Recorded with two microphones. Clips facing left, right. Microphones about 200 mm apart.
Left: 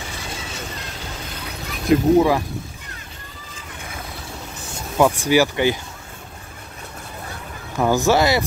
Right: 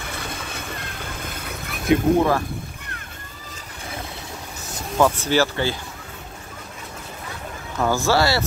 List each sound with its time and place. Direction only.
0.0 s vehicle: 55° right (ahead or behind)
1.9 s speech: 10° left (ahead or behind)
4.9 s speech: 10° left (ahead or behind)
7.8 s speech: 20° left (ahead or behind)